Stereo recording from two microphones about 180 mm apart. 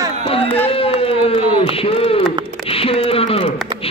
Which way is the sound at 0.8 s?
30° left (ahead or behind).